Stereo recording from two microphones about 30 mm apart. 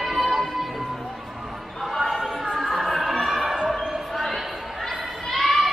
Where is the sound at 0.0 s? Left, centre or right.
Centre.